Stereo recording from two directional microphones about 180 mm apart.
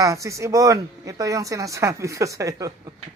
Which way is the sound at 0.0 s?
15° right (ahead or behind).